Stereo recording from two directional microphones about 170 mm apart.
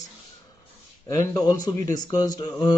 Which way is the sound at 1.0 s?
20° left (ahead or behind).